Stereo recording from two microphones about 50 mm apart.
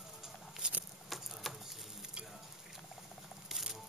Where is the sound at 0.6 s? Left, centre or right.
Centre.